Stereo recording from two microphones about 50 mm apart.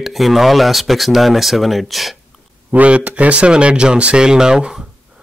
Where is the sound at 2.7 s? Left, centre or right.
Right.